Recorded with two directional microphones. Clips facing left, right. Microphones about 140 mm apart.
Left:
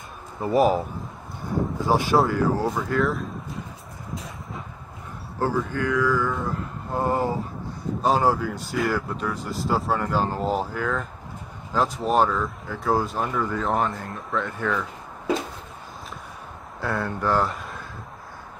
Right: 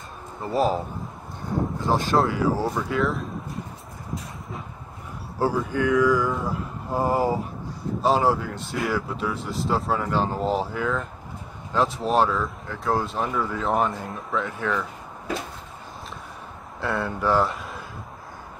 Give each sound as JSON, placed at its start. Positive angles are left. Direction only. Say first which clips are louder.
{"t": 0.4, "sound": "speech", "louder": "left 3 dB", "side_deg": 20}
{"t": 1.9, "sound": "speech", "louder": "left 1 dB", "side_deg": 10}
{"t": 5.4, "sound": "mantra", "louder": "right 2 dB", "side_deg": -15}
{"t": 8.0, "sound": "speech", "louder": "even", "side_deg": 0}
{"t": 16.8, "sound": "speech", "louder": "right 1 dB", "side_deg": 0}